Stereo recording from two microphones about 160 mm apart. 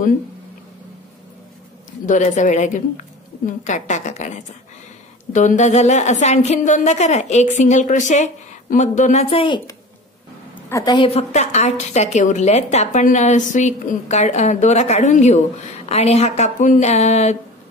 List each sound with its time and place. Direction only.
2.0 s a woman's voice: 50° left (ahead or behind)
10.7 s a woman's voice: 25° left (ahead or behind)
11.1 s a woman's voice: 45° left (ahead or behind)